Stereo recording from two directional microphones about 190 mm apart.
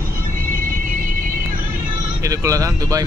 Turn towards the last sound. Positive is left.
turn(degrees=-20)  # may be behind; listen again after turning